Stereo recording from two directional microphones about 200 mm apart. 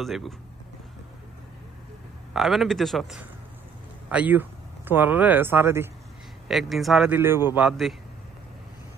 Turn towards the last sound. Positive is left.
turn(degrees=0)  # may be behind; listen again after turning